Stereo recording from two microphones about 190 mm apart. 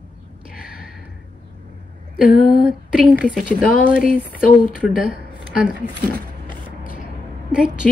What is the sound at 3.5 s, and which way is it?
Speech, 45° left (ahead or behind).